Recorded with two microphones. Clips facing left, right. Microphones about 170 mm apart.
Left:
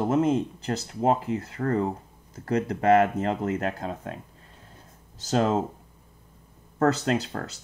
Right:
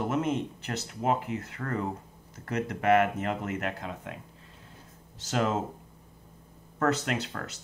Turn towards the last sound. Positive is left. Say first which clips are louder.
# left 6 dB
turn(degrees=35)  # may be behind; listen again after turning